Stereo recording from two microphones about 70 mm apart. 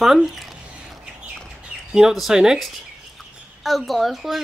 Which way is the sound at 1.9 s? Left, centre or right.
Centre.